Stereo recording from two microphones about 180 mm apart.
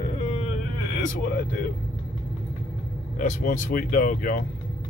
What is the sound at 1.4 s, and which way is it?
Speech, 50° left (ahead or behind).